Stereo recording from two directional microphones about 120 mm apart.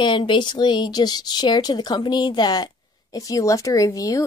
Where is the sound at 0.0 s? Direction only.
40° left (ahead or behind).